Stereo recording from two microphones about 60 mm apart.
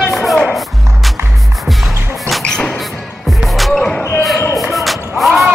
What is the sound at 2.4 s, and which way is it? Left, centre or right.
Music, centre.